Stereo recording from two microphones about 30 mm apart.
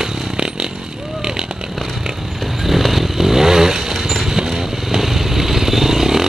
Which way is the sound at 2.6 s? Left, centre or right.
Centre.